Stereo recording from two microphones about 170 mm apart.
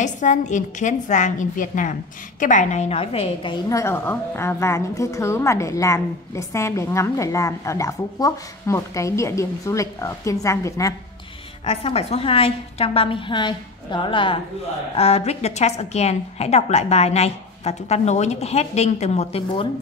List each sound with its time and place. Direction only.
0.0 s a woman's voice: 45° left (ahead or behind); by 11.0 s 20° left (ahead or behind)
11.6 s a woman's voice: 35° left (ahead or behind)